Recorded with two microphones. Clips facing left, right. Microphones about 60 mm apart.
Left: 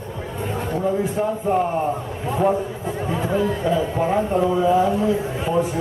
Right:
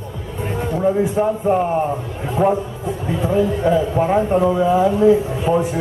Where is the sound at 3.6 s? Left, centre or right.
Right.